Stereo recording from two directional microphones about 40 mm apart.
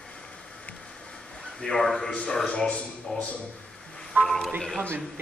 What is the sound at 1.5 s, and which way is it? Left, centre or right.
Speech, left.